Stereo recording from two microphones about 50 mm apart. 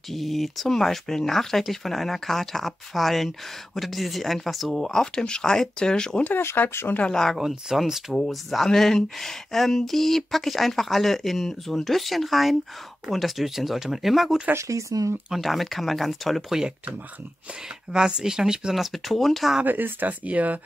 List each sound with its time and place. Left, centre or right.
0.1 s speech: centre
4.8 s speech: centre
6.3 s speech: left
7.1 s speech: centre
7.3 s speech: centre
14.5 s speech: right
15.3 s speech: centre
17.9 s speech: centre
18.9 s speech: centre
19.6 s speech: right